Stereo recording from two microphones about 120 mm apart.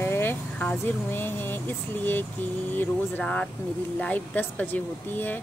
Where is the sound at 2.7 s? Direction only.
15° left (ahead or behind).